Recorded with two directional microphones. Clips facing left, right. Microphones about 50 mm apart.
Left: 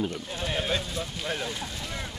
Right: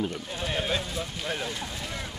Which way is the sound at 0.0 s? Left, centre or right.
Centre.